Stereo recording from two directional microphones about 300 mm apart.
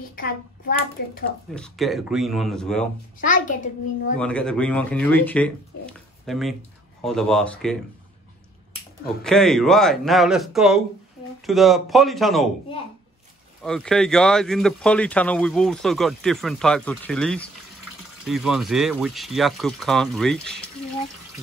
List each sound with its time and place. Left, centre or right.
0.1 s a child's voice: left
1.5 s speech: centre
3.2 s a child's voice: left
4.2 s speech: centre
9.2 s speech: centre
13.6 s speech: centre